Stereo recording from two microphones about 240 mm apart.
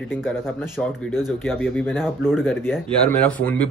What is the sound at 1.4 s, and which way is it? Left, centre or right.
Speech, centre.